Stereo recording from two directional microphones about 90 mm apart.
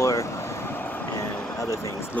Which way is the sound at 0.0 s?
35° left (ahead or behind).